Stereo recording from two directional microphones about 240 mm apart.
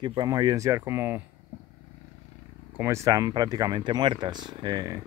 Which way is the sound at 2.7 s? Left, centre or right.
Centre.